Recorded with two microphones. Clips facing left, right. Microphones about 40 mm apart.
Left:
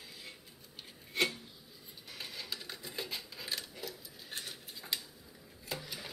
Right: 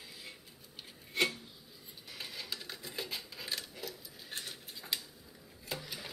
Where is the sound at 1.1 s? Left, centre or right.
Centre.